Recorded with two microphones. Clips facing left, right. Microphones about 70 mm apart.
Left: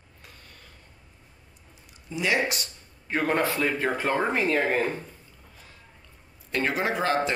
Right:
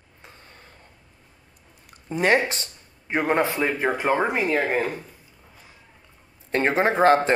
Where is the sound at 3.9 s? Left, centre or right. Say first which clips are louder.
Right 3 dB; centre.